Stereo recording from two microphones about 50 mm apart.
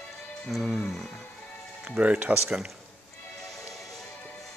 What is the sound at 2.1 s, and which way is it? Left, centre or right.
Speech, right.